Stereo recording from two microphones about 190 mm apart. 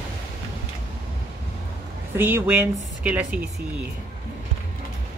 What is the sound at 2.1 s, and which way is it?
A woman's voice, 10° right (ahead or behind).